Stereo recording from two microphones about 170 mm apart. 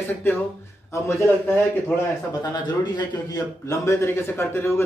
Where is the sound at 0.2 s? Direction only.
15° left (ahead or behind).